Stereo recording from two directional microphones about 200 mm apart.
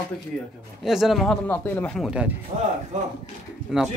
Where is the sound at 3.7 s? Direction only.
5° right (ahead or behind).